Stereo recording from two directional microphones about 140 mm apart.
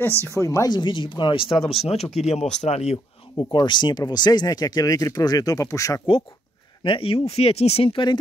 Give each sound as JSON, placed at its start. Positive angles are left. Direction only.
{"t": 0.1, "sound": "speech", "side_deg": -20}
{"t": 0.4, "sound": "speech", "side_deg": 25}
{"t": 3.3, "sound": "speech", "side_deg": 30}
{"t": 6.8, "sound": "speech", "side_deg": 40}